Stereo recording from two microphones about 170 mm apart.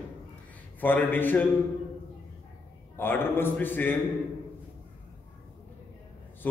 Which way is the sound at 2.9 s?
10° left (ahead or behind).